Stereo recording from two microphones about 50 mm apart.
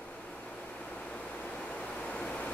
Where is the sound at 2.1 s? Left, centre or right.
Left.